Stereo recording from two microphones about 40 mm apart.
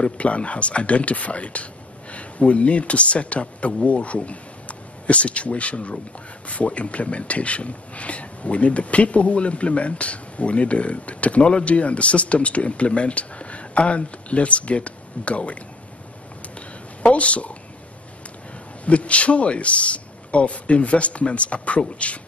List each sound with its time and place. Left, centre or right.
0.0 s speech: left
17.0 s speech: left
18.9 s speech: left